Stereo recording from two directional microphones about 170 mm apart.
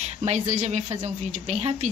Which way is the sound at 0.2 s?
40° right (ahead or behind).